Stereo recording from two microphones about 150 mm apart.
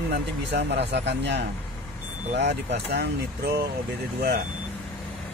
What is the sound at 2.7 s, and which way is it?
Speech, 90° right.